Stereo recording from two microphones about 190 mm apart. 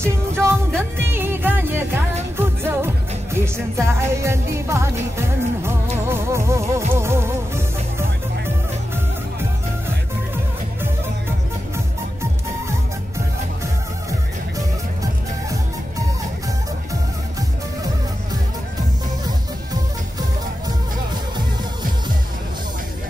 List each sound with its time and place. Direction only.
0.0 s music: 15° right (ahead or behind)
19.2 s music: 20° right (ahead or behind)